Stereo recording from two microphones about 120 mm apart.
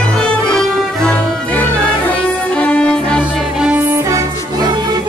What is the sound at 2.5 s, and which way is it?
Music, 10° left (ahead or behind).